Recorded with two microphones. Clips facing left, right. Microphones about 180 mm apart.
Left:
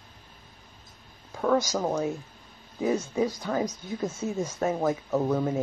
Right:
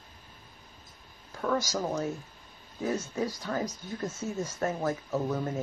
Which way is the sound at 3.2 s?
10° left (ahead or behind).